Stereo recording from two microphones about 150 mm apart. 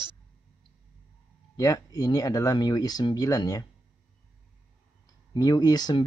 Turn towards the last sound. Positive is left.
turn(degrees=30)  # may be behind; listen again after turning